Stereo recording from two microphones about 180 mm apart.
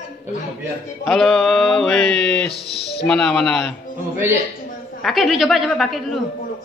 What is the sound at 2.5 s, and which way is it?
Speech, 35° left (ahead or behind).